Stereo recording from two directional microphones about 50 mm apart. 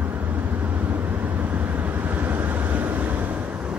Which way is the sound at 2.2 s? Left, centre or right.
Right.